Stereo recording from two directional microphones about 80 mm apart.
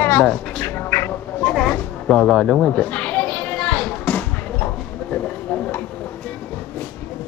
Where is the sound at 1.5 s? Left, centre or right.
Centre.